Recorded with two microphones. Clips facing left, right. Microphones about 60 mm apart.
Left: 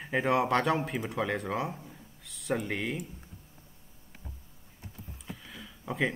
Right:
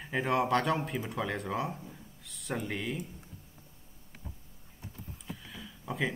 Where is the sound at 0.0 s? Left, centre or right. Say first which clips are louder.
Left 3 dB; centre.